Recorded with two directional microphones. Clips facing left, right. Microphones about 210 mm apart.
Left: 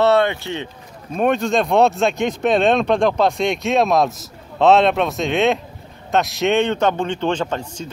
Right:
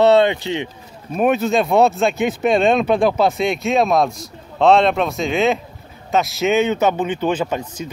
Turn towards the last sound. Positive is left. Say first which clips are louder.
# right 1 dB
turn(degrees=-10)  # may be behind; listen again after turning